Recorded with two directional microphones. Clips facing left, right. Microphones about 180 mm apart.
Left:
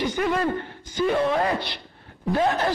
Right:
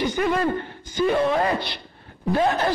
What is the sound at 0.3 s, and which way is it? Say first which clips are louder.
A man's voice: right 1 dB; 15° right (ahead or behind).